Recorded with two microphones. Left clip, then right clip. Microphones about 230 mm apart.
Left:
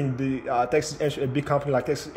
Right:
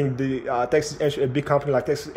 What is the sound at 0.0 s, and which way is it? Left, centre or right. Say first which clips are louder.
A man's voice: right 3 dB; centre.